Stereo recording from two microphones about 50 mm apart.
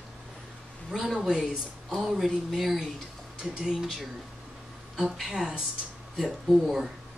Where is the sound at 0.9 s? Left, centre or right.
Centre.